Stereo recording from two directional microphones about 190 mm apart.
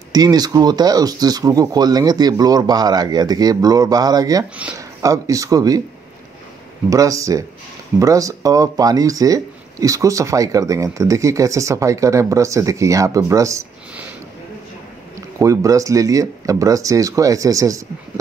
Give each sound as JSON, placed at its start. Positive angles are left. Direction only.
{"t": 0.1, "sound": "speech", "side_deg": -20}
{"t": 6.9, "sound": "speech", "side_deg": -15}
{"t": 15.1, "sound": "speech", "side_deg": -15}